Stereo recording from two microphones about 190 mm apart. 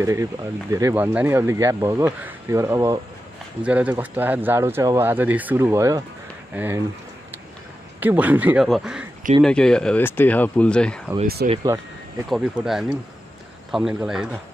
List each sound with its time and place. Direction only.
0.0 s speech: 15° right (ahead or behind)
8.0 s speech: 10° right (ahead or behind)
11.4 s speech: 55° right (ahead or behind)
12.3 s speech: centre (ahead or behind)